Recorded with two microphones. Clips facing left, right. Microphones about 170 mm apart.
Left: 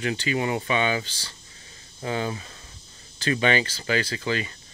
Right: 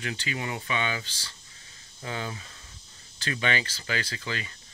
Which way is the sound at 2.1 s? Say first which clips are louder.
Left 7 dB; 25° left (ahead or behind).